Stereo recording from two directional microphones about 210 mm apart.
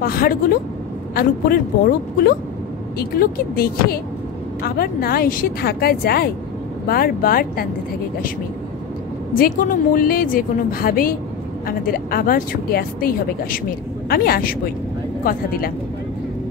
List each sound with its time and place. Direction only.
0.0 s speech: 45° left (ahead or behind)
9.3 s speech: 40° left (ahead or behind)